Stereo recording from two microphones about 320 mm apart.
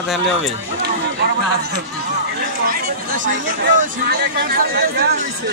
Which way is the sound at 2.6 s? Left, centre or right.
Right.